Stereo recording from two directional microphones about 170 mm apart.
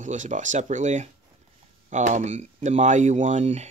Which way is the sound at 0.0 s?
45° right (ahead or behind).